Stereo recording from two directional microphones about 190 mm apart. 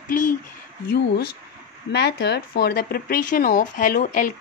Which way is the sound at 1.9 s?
60° left (ahead or behind).